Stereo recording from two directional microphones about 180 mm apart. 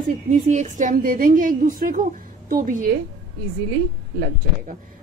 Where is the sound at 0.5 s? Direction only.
45° right (ahead or behind).